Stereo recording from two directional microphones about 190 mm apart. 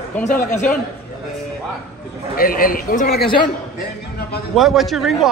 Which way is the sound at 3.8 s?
50° left (ahead or behind).